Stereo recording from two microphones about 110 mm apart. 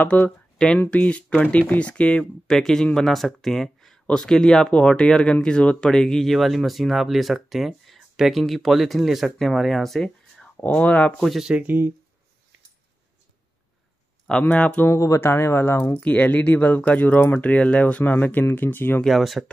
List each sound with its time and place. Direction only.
0.0 s speech: 15° left (ahead or behind)
11.1 s speech: centre (ahead or behind)
14.4 s speech: 15° left (ahead or behind)
14.9 s speech: 25° left (ahead or behind)
18.9 s speech: centre (ahead or behind)